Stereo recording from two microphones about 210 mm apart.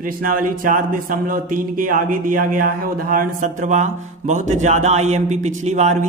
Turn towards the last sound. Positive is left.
turn(degrees=-35)  # may be behind; listen again after turning